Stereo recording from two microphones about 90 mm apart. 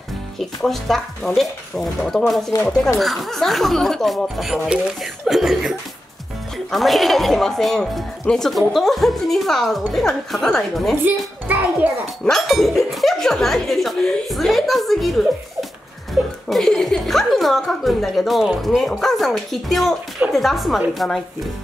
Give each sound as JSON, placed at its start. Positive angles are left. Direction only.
{"t": 0.4, "sound": "a woman's voice", "side_deg": 5}
{"t": 11.4, "sound": "a child's voice", "side_deg": -20}
{"t": 12.3, "sound": "a woman's voice", "side_deg": 0}
{"t": 16.4, "sound": "a woman's voice", "side_deg": 5}